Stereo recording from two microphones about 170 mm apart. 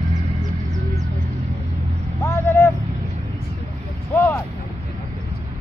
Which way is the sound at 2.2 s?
15° left (ahead or behind).